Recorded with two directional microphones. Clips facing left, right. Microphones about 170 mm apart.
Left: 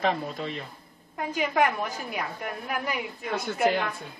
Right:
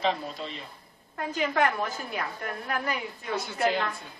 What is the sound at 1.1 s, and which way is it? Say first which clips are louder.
A man's voice: left 1 dB; 10° left (ahead or behind).